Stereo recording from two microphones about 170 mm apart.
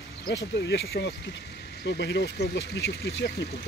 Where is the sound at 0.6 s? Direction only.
75° left (ahead or behind).